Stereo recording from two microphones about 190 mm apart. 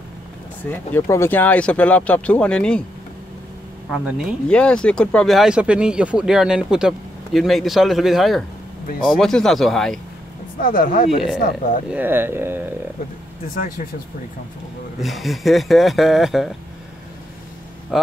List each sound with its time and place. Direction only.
0.7 s speech: 15° left (ahead or behind)
3.9 s speech: centre (ahead or behind)
10.6 s speech: 45° left (ahead or behind)
11.9 s speech: 10° right (ahead or behind)
15.0 s speech: centre (ahead or behind)
17.9 s speech: centre (ahead or behind)